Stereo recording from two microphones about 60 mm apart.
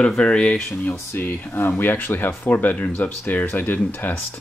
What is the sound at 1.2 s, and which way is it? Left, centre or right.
Speech, left.